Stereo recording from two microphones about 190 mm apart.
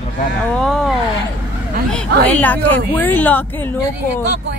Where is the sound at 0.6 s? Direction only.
Centre (ahead or behind).